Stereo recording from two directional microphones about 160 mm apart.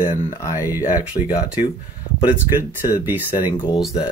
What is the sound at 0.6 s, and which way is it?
Speech, 15° right (ahead or behind).